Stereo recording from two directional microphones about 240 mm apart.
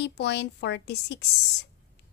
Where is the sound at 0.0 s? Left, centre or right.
Left.